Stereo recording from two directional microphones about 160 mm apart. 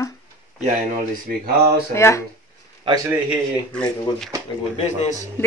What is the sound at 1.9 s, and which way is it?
Speech, 15° left (ahead or behind).